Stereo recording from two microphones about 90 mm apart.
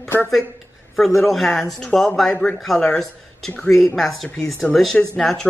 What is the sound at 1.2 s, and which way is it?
Speech, centre (ahead or behind).